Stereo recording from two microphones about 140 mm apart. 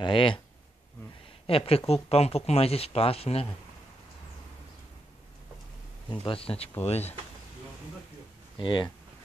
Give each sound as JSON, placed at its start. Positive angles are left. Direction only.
{"t": 0.0, "sound": "speech", "side_deg": 35}
{"t": 1.5, "sound": "speech", "side_deg": 40}
{"t": 6.0, "sound": "speech", "side_deg": 40}
{"t": 8.5, "sound": "speech", "side_deg": 35}